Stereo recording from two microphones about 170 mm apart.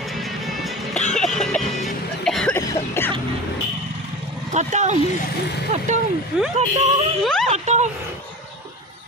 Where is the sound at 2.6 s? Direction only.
15° left (ahead or behind).